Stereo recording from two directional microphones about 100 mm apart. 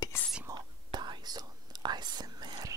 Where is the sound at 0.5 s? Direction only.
45° right (ahead or behind).